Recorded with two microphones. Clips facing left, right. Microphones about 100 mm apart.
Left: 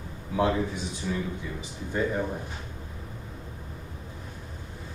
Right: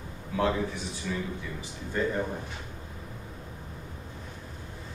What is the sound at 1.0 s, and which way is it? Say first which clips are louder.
Speech: left 2 dB; 25° left (ahead or behind).